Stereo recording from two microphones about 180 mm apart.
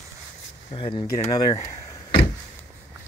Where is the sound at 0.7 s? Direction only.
30° left (ahead or behind).